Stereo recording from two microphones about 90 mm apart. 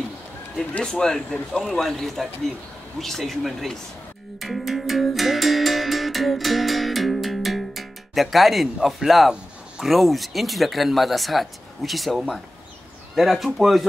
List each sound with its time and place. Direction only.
0.6 s speech: 5° left (ahead or behind)
4.4 s music: centre (ahead or behind)
9.3 s speech: 5° right (ahead or behind)